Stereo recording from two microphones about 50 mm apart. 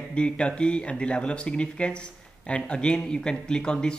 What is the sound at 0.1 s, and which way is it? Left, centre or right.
Speech, left.